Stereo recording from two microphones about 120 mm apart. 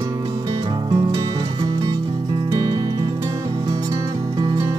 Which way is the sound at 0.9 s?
40° right (ahead or behind).